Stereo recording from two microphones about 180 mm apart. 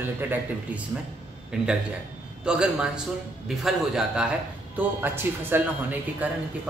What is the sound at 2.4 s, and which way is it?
A man's voice, 5° right (ahead or behind).